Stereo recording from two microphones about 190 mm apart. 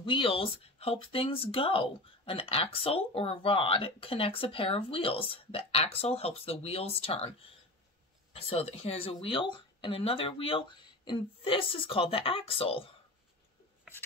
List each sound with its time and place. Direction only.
0.0 s speech: 25° left (ahead or behind)